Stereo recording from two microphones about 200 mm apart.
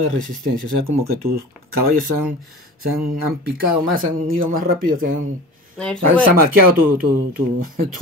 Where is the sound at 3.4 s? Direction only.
45° right (ahead or behind).